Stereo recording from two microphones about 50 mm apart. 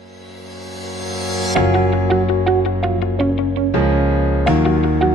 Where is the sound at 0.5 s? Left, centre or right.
Centre.